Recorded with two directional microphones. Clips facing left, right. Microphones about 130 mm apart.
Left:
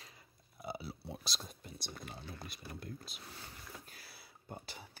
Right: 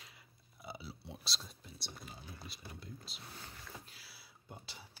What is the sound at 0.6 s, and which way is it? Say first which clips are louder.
Speech: left 5 dB; 50° left (ahead or behind).